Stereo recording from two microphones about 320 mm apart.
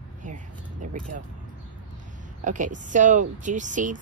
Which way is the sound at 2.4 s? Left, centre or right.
Right.